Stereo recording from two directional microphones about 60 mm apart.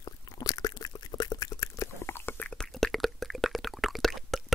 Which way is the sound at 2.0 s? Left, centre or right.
Left.